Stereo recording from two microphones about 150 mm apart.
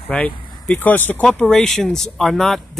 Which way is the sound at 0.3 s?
30° left (ahead or behind).